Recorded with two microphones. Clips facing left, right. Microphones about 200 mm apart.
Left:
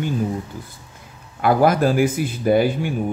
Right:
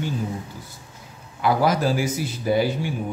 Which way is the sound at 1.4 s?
55° left (ahead or behind).